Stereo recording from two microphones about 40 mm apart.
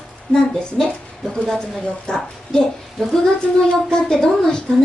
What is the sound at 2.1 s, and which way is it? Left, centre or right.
Speech, centre.